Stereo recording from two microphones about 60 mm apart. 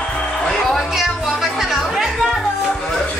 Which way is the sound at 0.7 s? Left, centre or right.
Centre.